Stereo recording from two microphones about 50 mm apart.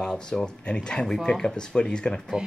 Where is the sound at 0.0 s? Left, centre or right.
Centre.